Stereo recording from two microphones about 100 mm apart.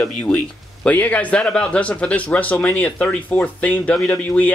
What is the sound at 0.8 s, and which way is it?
Speech, 15° left (ahead or behind).